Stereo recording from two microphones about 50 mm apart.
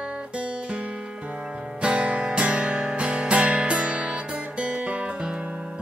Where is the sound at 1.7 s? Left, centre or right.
Right.